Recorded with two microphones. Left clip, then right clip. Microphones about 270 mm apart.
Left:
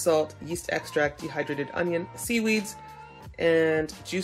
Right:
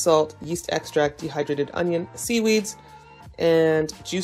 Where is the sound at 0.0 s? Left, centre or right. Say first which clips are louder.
Right 5 dB; centre.